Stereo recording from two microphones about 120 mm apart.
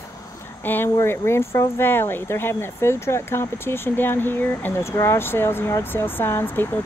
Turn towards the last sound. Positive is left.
turn(degrees=15)  # may be behind; listen again after turning